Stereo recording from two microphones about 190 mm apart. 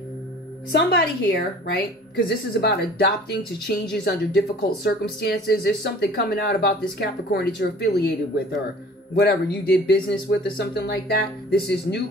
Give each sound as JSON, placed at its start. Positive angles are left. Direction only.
{"t": 0.7, "sound": "a woman's voice", "side_deg": 55}
{"t": 9.1, "sound": "a woman's voice", "side_deg": 60}